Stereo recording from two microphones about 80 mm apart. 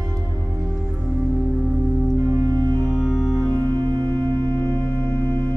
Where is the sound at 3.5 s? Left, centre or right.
Right.